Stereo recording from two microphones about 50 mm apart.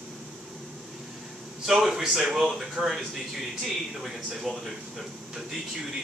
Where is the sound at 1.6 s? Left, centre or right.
Centre.